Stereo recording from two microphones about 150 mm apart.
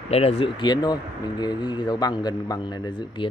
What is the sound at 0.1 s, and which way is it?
A man's voice, 45° left (ahead or behind).